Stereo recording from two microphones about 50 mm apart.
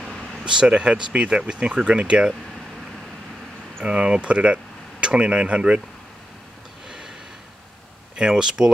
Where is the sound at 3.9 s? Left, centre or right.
Right.